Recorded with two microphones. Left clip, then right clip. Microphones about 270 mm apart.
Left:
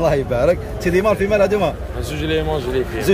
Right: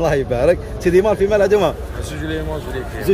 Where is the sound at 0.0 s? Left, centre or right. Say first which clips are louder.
Even; centre.